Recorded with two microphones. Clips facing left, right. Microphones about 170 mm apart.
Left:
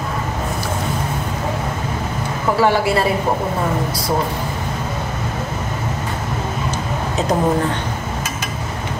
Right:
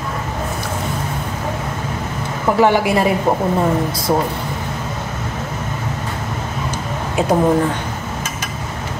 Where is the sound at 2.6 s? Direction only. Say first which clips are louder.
Right 2 dB; 20° right (ahead or behind).